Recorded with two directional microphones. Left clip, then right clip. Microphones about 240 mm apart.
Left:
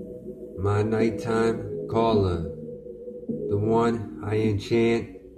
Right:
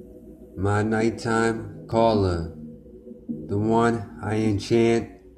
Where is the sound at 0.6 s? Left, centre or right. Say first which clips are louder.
Right 1 dB; centre.